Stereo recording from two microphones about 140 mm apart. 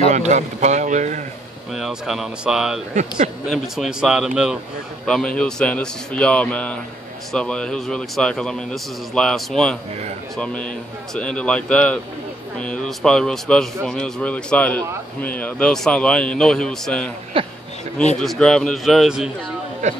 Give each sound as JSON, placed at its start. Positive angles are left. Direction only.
{"t": 0.1, "sound": "speech", "side_deg": -55}
{"t": 1.7, "sound": "speech", "side_deg": 0}
{"t": 2.9, "sound": "speech", "side_deg": -60}
{"t": 3.4, "sound": "speech", "side_deg": 0}
{"t": 5.0, "sound": "a man's voice", "side_deg": 5}
{"t": 17.3, "sound": "speech", "side_deg": -40}
{"t": 18.2, "sound": "speech", "side_deg": 5}
{"t": 19.8, "sound": "speech", "side_deg": -55}